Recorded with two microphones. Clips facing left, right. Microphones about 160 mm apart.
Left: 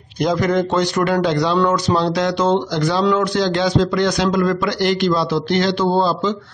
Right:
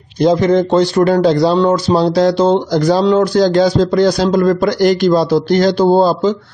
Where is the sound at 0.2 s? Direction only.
30° right (ahead or behind).